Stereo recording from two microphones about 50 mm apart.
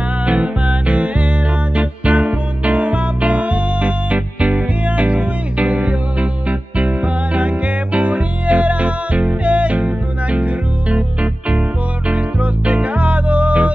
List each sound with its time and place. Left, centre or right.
0.3 s music: right